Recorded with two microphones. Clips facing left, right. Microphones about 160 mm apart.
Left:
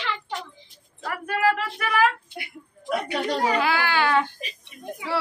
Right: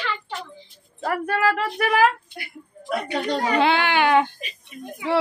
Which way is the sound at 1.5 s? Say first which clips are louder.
Right 4 dB; 40° right (ahead or behind).